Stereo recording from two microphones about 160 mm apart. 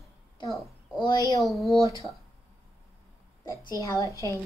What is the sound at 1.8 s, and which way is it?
Speech, 20° right (ahead or behind).